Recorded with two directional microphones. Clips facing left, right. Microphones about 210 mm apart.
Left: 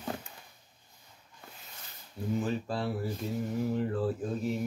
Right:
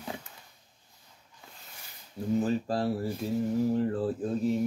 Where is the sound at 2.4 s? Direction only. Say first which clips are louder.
Right 5 dB; 35° right (ahead or behind).